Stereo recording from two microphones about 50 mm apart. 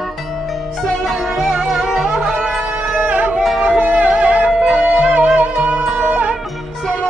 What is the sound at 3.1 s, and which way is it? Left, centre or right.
Music, right.